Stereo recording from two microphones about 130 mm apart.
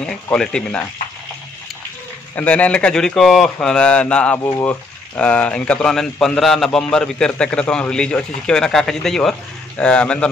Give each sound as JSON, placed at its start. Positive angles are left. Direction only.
{"t": 0.0, "sound": "speech", "side_deg": 5}
{"t": 2.3, "sound": "a man's voice", "side_deg": 10}
{"t": 4.4, "sound": "speech", "side_deg": 25}
{"t": 4.6, "sound": "speech", "side_deg": 10}